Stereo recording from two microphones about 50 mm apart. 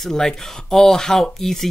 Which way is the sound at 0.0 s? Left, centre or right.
Centre.